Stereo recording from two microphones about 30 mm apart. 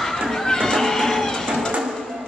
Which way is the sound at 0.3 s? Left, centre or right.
Centre.